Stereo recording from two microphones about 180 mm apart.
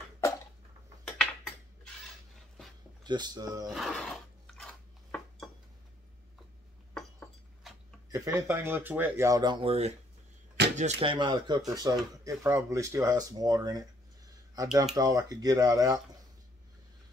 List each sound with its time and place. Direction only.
3.0 s speech: 25° right (ahead or behind)
3.6 s speech: centre (ahead or behind)
8.1 s speech: 15° right (ahead or behind)